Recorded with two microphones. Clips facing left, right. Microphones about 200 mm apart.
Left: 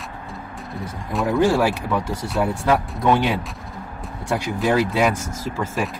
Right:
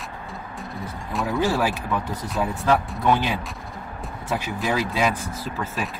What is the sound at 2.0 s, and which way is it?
Speech, 90° left.